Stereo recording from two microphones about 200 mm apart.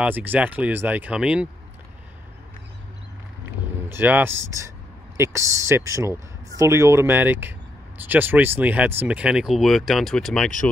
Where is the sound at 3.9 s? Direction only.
10° right (ahead or behind).